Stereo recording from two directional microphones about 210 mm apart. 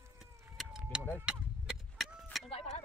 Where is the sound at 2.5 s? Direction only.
30° left (ahead or behind).